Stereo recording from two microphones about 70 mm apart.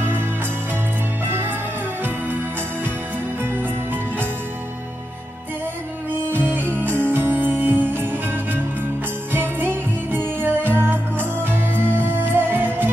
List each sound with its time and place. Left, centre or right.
3.4 s music: right
6.2 s music: right